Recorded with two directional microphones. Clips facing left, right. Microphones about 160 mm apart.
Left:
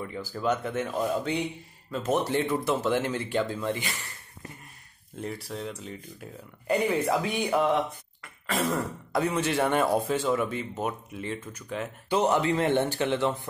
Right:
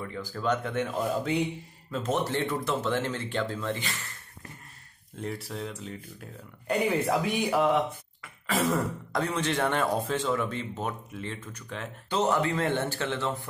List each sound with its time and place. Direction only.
0.0 s speech: 10° left (ahead or behind)
1.9 s speech: 10° left (ahead or behind)
5.2 s speech: centre (ahead or behind)
8.2 s throat clearing: centre (ahead or behind)
9.2 s speech: 10° left (ahead or behind)